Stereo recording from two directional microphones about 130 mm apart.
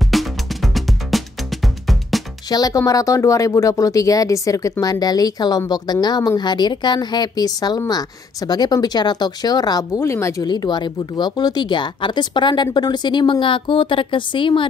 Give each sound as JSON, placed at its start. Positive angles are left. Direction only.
{"t": 0.1, "sound": "music", "side_deg": 0}
{"t": 2.5, "sound": "speech", "side_deg": 30}
{"t": 9.9, "sound": "speech", "side_deg": 20}